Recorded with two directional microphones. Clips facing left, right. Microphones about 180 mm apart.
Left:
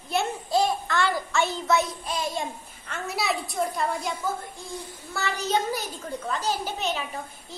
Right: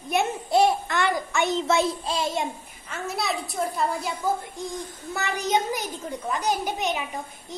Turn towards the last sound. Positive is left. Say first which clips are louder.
# right 2 dB
turn(degrees=-15)  # may be behind; listen again after turning